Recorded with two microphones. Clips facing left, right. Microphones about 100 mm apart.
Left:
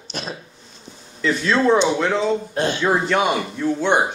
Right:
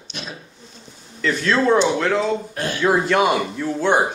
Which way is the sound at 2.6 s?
25° left (ahead or behind).